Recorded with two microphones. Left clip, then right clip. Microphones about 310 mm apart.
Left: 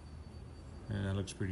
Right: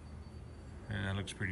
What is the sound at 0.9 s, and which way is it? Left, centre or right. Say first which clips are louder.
Speech: right 1 dB; centre.